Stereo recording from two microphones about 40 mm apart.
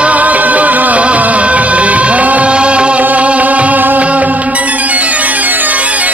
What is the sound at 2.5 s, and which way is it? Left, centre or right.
Music, right.